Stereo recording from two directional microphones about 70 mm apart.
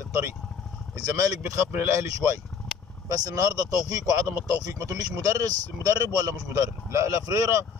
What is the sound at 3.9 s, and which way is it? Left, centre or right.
Speech, right.